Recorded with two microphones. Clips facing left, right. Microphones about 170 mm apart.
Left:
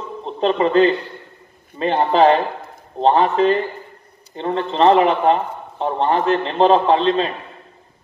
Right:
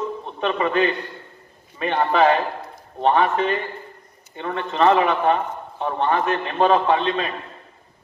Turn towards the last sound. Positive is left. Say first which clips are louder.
# left 4 dB
turn(degrees=30)  # may be behind; listen again after turning